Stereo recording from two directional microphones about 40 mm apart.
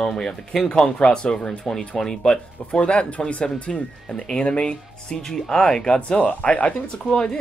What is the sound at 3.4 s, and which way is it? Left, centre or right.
Speech, left.